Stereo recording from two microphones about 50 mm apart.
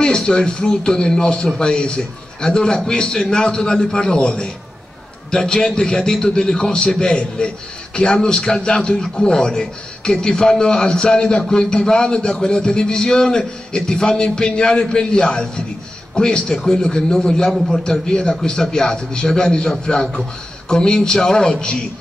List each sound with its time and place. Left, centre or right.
0.0 s a man's voice: centre